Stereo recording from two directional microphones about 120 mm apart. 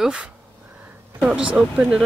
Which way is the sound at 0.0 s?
5° right (ahead or behind).